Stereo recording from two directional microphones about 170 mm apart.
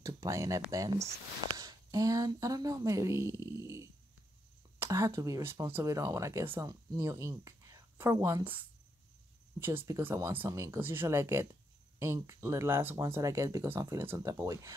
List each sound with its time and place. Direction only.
0.0 s speech: 20° right (ahead or behind)